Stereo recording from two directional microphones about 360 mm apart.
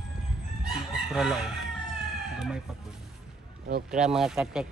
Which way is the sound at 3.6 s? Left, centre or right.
Right.